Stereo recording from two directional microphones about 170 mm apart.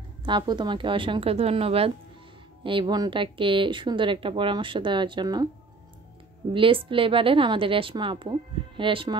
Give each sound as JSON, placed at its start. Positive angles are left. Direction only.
{"t": 0.2, "sound": "speech", "side_deg": -25}
{"t": 6.5, "sound": "a woman's voice", "side_deg": -30}